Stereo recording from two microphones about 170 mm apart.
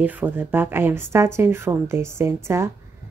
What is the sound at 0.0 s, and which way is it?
Speech, 10° right (ahead or behind).